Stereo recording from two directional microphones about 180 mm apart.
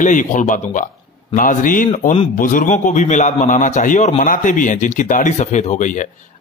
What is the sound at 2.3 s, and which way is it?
Speech, 45° left (ahead or behind).